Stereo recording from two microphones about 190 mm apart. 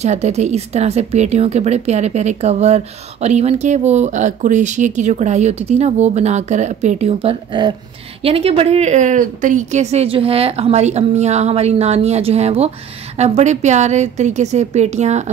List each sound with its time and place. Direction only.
0.0 s a woman's voice: 35° right (ahead or behind)